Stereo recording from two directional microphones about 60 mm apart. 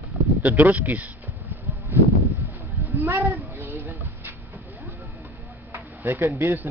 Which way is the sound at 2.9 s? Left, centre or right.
Right.